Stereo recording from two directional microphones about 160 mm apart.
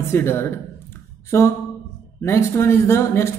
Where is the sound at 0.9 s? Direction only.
15° left (ahead or behind).